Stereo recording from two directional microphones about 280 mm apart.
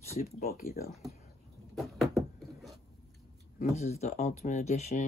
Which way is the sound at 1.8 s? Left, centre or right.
Centre.